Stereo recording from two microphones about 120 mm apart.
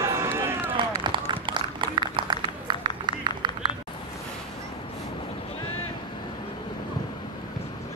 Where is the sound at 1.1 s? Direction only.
45° right (ahead or behind).